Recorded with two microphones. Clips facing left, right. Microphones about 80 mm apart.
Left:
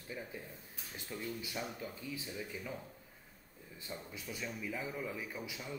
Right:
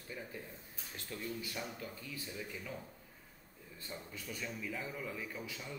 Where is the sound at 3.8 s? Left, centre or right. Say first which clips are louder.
Left 1 dB; centre.